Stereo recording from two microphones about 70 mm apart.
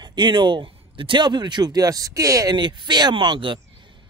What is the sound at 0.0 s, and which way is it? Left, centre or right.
Speech, right.